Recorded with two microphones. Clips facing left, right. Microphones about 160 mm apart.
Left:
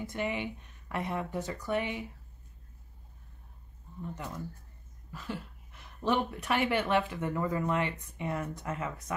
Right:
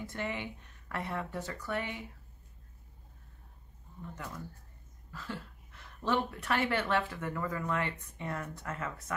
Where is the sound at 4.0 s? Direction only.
20° left (ahead or behind).